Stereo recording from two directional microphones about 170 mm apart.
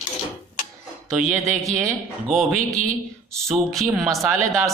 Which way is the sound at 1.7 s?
20° right (ahead or behind).